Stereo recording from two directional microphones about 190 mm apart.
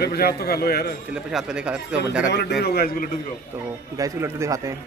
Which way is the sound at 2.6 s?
55° left (ahead or behind).